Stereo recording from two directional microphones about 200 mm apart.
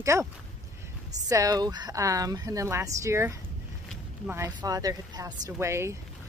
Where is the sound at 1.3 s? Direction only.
15° right (ahead or behind).